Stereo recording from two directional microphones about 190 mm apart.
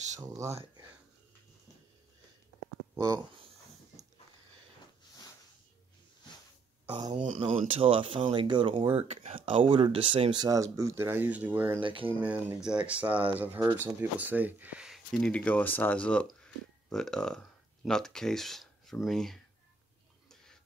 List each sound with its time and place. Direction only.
0.5 s speech: 30° right (ahead or behind)
2.9 s a sound: 15° right (ahead or behind)
6.9 s speech: 25° right (ahead or behind)
7.2 s speech: 35° right (ahead or behind); by 11.8 s 10° right (ahead or behind)
11.8 s speech: 25° right (ahead or behind)
12.1 s speech: 10° right (ahead or behind)